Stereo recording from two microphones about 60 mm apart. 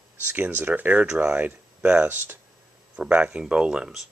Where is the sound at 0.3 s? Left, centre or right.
Right.